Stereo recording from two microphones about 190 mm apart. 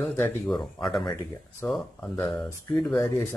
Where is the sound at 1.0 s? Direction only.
25° left (ahead or behind).